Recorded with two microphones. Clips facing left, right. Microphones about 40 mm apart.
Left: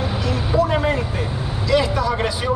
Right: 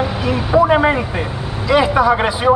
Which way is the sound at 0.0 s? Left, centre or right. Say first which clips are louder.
Right 5 dB; centre.